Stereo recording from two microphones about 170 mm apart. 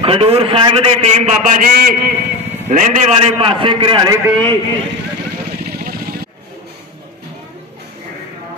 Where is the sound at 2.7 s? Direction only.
45° right (ahead or behind).